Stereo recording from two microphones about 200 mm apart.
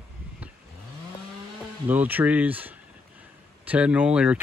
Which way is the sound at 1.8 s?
10° right (ahead or behind).